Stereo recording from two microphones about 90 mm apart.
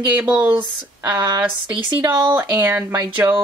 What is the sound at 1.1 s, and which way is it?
Speech, 55° right (ahead or behind).